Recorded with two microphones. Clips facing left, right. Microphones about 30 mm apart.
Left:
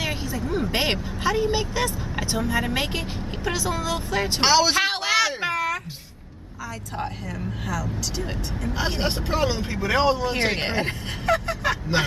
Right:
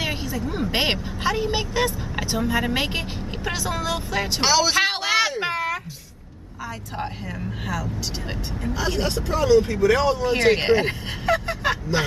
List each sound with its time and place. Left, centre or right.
0.0 s a sound: centre
0.7 s speech: centre
4.4 s speech: centre
4.7 s a sound: centre
7.6 s speech: centre
8.7 s speech: left
10.5 s speech: centre